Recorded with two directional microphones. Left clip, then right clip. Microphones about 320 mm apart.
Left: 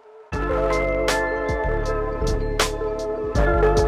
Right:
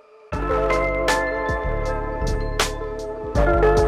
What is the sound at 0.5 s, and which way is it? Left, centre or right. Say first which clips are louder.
Music: right 1 dB; centre.